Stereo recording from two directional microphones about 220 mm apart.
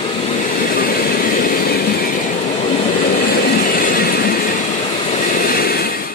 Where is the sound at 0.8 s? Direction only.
40° left (ahead or behind).